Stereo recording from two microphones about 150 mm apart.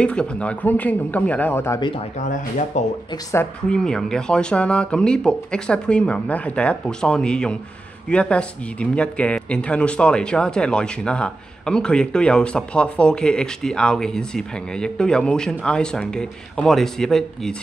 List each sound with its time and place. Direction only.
0.0 s speech: 5° left (ahead or behind)
1.8 s speech: 35° left (ahead or behind)
2.2 s speech: 55° left (ahead or behind)
3.6 s speech: 5° left (ahead or behind)